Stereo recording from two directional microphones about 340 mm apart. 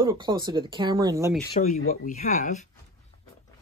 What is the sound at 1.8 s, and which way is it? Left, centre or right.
Speech, left.